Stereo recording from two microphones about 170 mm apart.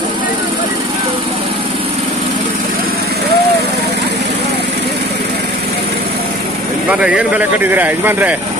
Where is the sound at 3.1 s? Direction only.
70° right (ahead or behind).